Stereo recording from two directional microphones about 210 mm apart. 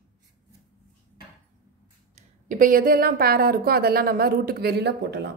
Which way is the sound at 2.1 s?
40° right (ahead or behind).